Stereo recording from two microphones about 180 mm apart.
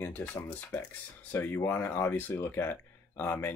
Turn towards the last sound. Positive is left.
turn(degrees=10)  # may be behind; listen again after turning